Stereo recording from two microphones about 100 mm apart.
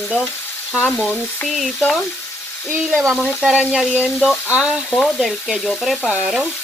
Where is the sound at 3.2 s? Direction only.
10° right (ahead or behind).